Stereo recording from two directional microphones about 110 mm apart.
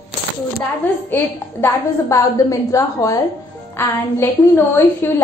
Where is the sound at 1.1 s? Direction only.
25° left (ahead or behind).